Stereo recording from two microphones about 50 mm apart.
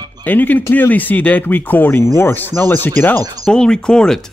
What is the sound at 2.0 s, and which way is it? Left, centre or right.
Speech, left.